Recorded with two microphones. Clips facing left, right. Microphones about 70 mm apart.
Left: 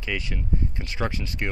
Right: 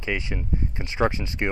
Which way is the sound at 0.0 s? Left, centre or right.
Right.